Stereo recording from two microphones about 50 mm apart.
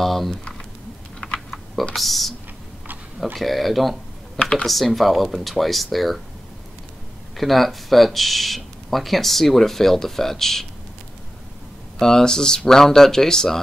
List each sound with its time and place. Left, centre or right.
0.0 s speech: centre
1.2 s typing: centre
2.0 s speech: centre
3.3 s speech: centre
4.4 s speech: centre
4.6 s speech: centre
7.3 s speech: centre
12.0 s speech: centre